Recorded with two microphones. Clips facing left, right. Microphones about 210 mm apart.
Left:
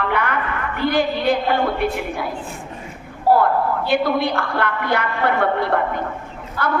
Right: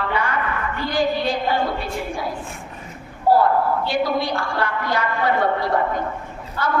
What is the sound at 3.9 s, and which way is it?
A woman's voice, 60° left (ahead or behind).